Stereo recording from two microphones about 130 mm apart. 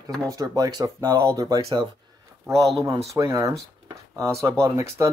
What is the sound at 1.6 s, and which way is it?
Speech, 45° right (ahead or behind).